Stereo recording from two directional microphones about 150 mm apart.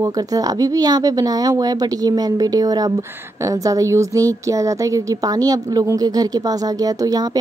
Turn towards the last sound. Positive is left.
turn(degrees=-25)  # may be behind; listen again after turning